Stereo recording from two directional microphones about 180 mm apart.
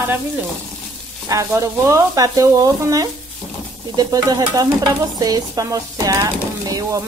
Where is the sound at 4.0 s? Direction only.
20° right (ahead or behind).